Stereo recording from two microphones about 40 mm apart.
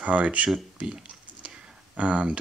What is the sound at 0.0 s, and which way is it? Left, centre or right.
Speech, right.